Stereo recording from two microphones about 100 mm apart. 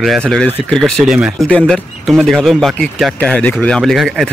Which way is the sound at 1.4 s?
10° left (ahead or behind).